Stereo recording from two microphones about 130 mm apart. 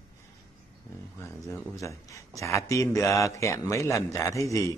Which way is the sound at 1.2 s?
20° left (ahead or behind).